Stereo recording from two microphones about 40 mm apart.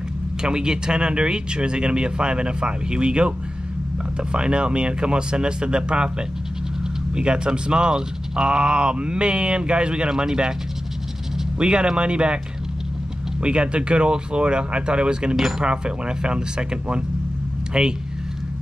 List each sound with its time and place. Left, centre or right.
0.4 s speech: centre
11.5 s speech: right
13.4 s speech: right